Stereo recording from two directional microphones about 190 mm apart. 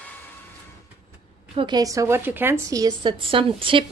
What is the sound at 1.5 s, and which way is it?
A woman's voice, 25° right (ahead or behind).